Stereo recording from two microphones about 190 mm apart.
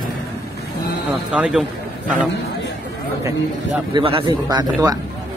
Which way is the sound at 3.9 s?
25° right (ahead or behind).